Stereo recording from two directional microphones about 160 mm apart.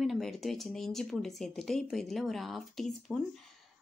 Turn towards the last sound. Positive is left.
turn(degrees=0)  # may be behind; listen again after turning